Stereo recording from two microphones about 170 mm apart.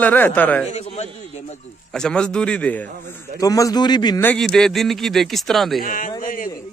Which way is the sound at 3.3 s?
20° left (ahead or behind).